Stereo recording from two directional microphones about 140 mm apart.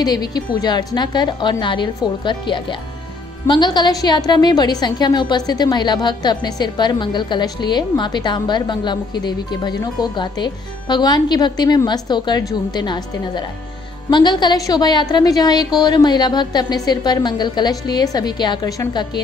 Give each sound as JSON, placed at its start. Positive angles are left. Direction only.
{"t": 0.0, "sound": "a woman's voice", "side_deg": 30}